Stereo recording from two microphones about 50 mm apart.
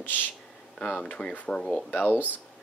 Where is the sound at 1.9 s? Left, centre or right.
Left.